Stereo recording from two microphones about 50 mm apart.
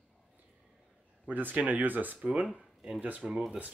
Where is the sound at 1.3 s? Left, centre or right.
Right.